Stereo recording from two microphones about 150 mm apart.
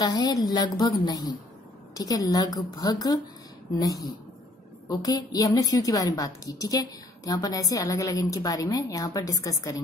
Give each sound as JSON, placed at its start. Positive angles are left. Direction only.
{"t": 0.0, "sound": "a woman's voice", "side_deg": 25}